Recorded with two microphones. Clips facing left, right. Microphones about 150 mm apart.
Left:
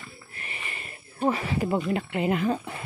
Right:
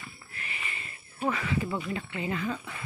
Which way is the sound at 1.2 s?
35° left (ahead or behind).